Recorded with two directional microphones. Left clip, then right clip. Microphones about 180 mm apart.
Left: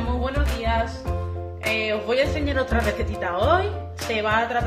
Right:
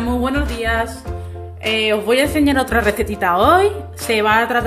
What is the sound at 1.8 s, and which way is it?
Speech, 60° right (ahead or behind).